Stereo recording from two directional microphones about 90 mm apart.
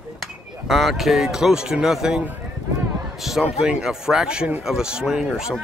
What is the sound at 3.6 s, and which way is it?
Speech, 5° right (ahead or behind).